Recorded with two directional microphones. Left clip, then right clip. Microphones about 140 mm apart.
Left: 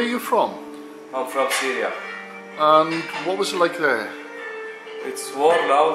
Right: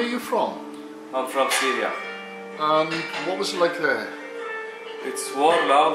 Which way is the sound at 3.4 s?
15° left (ahead or behind).